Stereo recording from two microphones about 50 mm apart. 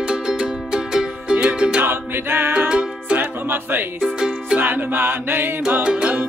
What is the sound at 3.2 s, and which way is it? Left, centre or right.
Music, right.